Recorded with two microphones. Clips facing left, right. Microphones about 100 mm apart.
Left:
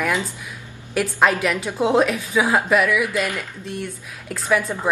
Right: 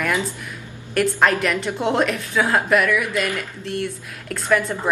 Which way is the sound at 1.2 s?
5° left (ahead or behind).